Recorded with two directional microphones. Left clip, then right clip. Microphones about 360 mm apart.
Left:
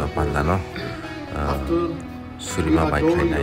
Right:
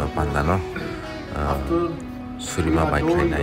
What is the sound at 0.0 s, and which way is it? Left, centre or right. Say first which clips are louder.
A man's voice: even; centre.